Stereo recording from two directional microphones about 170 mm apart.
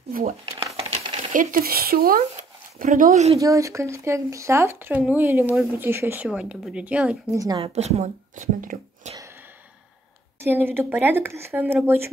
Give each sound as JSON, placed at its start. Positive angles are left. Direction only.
{"t": 0.1, "sound": "speech", "side_deg": -55}
{"t": 0.5, "sound": "crumpling", "side_deg": -20}
{"t": 0.7, "sound": "a sound", "side_deg": -35}
{"t": 1.3, "sound": "speech", "side_deg": -55}
{"t": 3.3, "sound": "speech", "side_deg": -20}
{"t": 7.3, "sound": "speech", "side_deg": -20}
{"t": 7.6, "sound": "speech", "side_deg": -40}
{"t": 10.4, "sound": "speech", "side_deg": -15}